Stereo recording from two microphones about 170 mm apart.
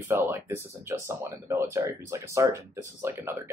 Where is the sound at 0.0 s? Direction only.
15° right (ahead or behind).